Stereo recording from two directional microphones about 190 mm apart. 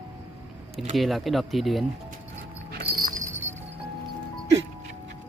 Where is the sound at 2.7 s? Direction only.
50° right (ahead or behind).